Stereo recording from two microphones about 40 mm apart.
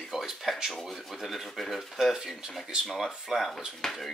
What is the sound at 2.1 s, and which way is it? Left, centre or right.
Speech, centre.